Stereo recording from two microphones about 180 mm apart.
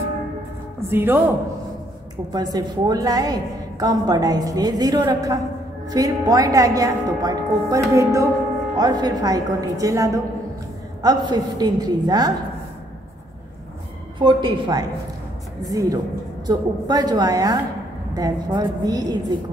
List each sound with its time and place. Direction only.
0.8 s speech: 10° right (ahead or behind)
2.3 s a woman's voice: 20° right (ahead or behind)
14.2 s a woman's voice: 25° right (ahead or behind)